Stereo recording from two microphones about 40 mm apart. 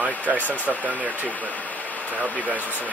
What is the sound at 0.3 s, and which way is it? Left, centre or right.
Speech, right.